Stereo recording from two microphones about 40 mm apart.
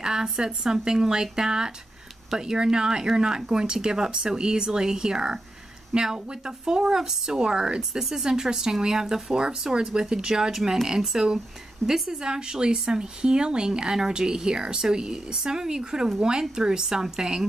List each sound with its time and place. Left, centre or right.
0.0 s speech: centre